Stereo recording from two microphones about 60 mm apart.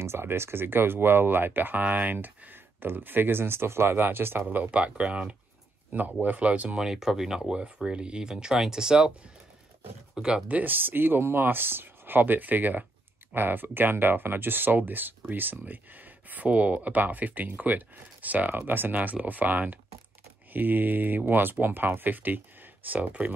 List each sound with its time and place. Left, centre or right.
0.0 s speech: right; by 5.3 s centre
5.9 s speech: right
6.8 s speech: centre
10.1 s speech: centre
10.6 s speech: right